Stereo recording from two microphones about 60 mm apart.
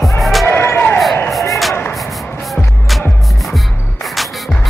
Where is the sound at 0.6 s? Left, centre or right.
Left.